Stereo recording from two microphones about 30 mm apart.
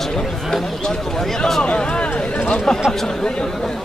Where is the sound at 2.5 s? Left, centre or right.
Left.